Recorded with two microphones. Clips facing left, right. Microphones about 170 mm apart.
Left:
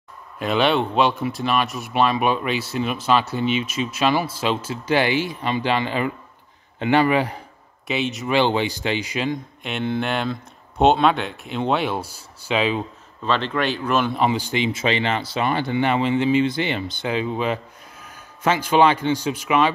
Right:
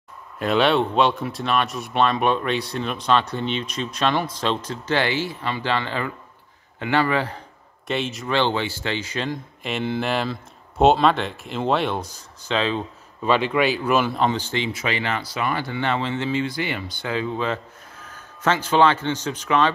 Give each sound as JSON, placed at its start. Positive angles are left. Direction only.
{"t": 0.4, "sound": "speech", "side_deg": 0}
{"t": 7.8, "sound": "speech", "side_deg": 0}
{"t": 8.3, "sound": "speech", "side_deg": 15}
{"t": 9.3, "sound": "speech", "side_deg": 0}
{"t": 13.2, "sound": "speech", "side_deg": -10}
{"t": 14.2, "sound": "a man's voice", "side_deg": 10}